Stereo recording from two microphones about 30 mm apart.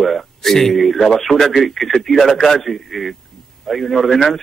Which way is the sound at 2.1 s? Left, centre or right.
Centre.